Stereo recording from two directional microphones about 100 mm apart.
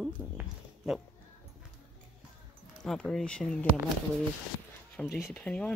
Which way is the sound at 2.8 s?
5° left (ahead or behind).